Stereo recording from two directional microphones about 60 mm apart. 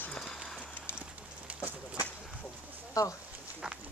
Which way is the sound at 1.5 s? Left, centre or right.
Right.